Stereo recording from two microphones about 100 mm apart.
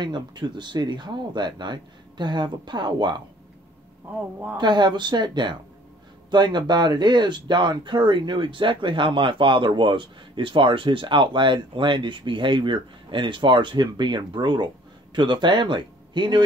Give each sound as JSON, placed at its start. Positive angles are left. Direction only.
{"t": 0.0, "sound": "speech", "side_deg": -50}
{"t": 4.6, "sound": "speech", "side_deg": -50}